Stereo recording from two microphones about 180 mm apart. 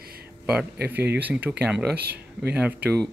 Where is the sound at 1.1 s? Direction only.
10° right (ahead or behind).